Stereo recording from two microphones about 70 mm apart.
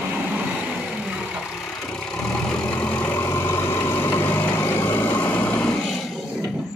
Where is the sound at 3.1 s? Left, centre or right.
Left; by 5.8 s centre.